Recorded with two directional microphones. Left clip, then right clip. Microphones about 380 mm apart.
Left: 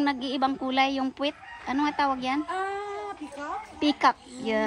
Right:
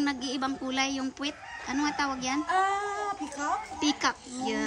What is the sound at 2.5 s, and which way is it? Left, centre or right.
Child singing, right.